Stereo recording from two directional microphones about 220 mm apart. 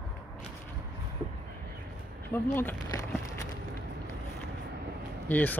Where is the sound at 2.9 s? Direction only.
15° left (ahead or behind).